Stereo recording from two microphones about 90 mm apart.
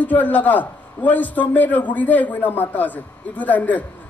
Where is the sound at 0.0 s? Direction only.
20° left (ahead or behind).